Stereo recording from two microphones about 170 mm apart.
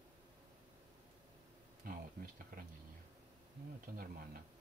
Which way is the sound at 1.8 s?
55° right (ahead or behind).